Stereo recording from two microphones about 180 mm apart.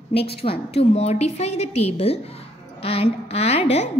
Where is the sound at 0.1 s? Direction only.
35° left (ahead or behind).